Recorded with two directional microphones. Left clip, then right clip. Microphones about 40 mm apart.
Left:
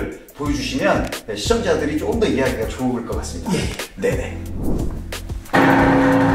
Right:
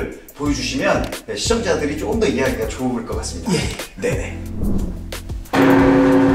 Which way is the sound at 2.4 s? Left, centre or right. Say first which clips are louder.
Even; centre.